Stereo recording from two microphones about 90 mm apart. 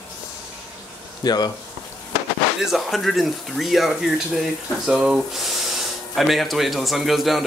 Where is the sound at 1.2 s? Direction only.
50° left (ahead or behind).